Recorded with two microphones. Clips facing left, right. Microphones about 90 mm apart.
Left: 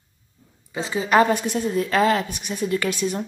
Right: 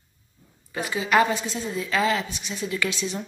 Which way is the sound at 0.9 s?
40° left (ahead or behind).